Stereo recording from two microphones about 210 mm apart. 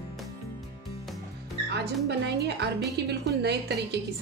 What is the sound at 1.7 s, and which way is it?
A woman's voice, 55° right (ahead or behind).